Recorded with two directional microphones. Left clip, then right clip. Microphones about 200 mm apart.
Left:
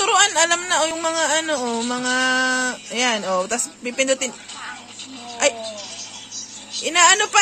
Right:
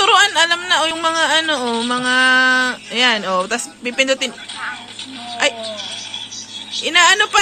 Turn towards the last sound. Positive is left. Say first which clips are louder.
# right 3 dB
turn(degrees=20)  # may be behind; listen again after turning